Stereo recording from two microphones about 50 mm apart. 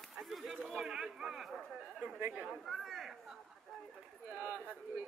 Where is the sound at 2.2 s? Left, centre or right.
Right.